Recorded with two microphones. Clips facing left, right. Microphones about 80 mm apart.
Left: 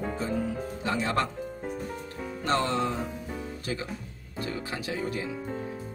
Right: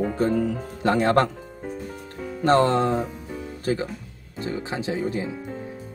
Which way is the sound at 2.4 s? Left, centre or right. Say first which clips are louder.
Right 8 dB; right.